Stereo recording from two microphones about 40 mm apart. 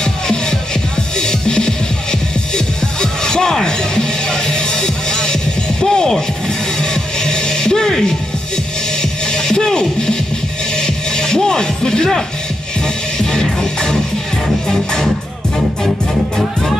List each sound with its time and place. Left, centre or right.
0.0 s music: centre
9.2 s music: centre